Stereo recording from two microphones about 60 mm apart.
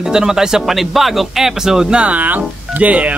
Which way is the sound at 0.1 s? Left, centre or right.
Centre.